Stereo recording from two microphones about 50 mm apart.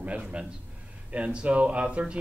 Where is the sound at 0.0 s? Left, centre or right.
Right.